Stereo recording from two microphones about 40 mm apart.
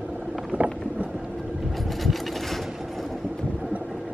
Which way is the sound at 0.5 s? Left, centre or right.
Right.